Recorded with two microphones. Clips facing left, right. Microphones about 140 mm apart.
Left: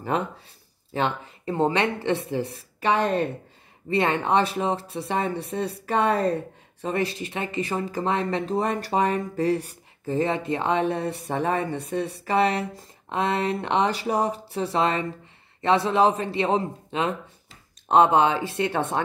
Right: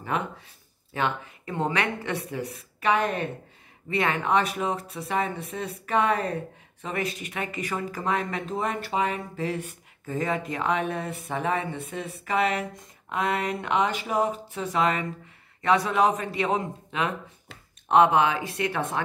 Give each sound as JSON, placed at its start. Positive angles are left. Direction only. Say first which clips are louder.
{"t": 0.9, "sound": "a man's voice", "louder": "left 2 dB", "side_deg": 30}